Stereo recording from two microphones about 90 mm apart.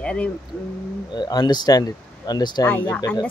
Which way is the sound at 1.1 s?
55° left (ahead or behind).